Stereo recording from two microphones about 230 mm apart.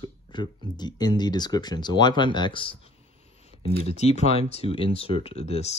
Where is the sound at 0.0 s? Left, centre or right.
Centre.